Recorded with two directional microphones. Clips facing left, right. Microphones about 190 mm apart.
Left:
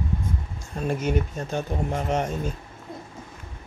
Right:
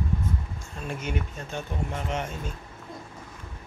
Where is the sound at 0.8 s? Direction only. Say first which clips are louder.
Left 8 dB; 40° left (ahead or behind).